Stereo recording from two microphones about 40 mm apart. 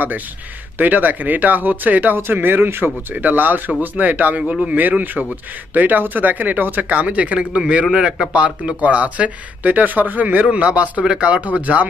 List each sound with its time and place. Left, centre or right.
0.7 s speech: right
2.1 s speech: right
4.4 s speech: right
4.7 s speech: right
7.0 s a man's voice: right